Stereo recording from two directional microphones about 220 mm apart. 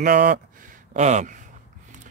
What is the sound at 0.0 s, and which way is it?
Speech, 40° right (ahead or behind).